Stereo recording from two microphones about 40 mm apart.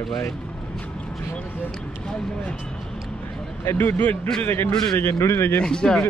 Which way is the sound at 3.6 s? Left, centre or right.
Left.